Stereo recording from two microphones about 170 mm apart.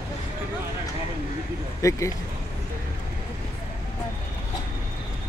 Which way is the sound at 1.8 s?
20° left (ahead or behind).